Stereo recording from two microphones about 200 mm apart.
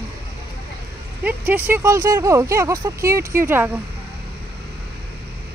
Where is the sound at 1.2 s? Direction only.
10° right (ahead or behind).